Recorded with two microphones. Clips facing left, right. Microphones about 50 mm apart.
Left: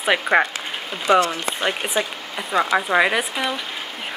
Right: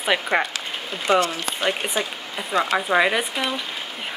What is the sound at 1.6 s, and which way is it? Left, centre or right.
Speech, centre.